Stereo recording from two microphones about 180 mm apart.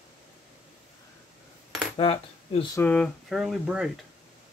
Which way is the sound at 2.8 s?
5° left (ahead or behind).